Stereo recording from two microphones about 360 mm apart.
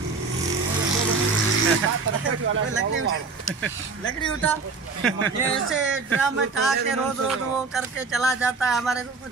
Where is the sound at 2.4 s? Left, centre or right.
Right.